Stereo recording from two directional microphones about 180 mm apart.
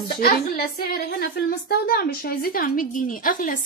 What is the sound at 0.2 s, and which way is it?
Speech, 55° left (ahead or behind).